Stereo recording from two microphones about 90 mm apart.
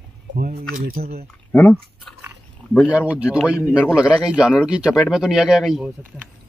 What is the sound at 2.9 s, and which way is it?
Speech, 15° right (ahead or behind).